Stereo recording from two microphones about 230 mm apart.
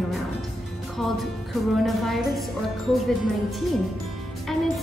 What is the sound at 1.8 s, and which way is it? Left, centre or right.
Music, centre.